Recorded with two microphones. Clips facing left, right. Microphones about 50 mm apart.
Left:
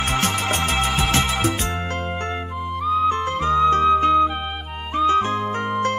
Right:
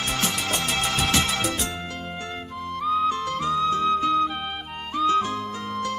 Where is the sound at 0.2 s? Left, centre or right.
Left.